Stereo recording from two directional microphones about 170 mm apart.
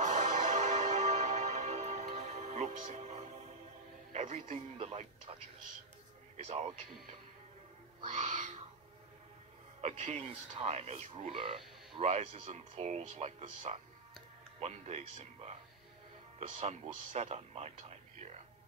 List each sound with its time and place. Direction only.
0.0 s music: 45° right (ahead or behind)
4.1 s speech: 45° right (ahead or behind)
6.3 s speech: 40° right (ahead or behind)
8.0 s owl: 40° right (ahead or behind)
9.8 s speech: 40° right (ahead or behind)